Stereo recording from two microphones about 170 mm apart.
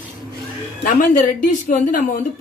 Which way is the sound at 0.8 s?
50° left (ahead or behind).